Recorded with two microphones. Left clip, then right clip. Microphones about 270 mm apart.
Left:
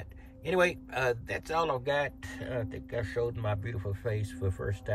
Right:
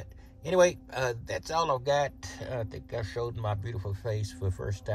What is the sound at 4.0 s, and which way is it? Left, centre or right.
Speech, centre.